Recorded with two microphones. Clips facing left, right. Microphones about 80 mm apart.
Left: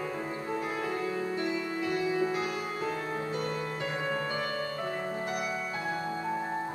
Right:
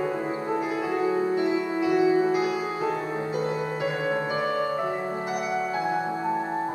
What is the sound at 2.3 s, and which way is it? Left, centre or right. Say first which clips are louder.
Music: right 7 dB; centre.